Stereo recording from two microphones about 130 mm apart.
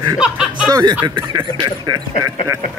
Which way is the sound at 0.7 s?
35° right (ahead or behind).